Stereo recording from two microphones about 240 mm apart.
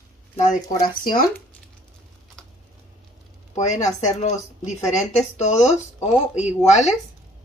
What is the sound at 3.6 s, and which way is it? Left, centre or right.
Speech, left.